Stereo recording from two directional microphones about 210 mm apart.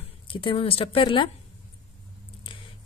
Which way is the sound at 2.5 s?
25° left (ahead or behind).